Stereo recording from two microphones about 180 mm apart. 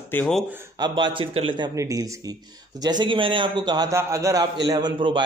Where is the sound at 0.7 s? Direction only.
25° right (ahead or behind).